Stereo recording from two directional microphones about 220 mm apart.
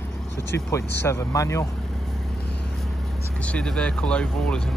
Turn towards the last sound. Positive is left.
turn(degrees=5)  # may be behind; listen again after turning